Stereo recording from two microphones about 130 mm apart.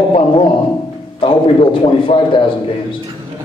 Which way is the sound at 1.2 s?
40° left (ahead or behind).